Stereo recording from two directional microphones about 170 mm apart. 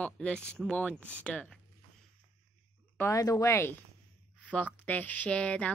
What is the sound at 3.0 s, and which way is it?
Speech, 20° left (ahead or behind).